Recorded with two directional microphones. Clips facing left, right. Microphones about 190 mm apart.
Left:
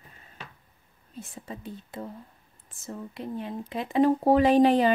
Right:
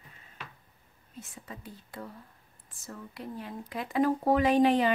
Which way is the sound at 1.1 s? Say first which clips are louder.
Left 5 dB; 30° left (ahead or behind).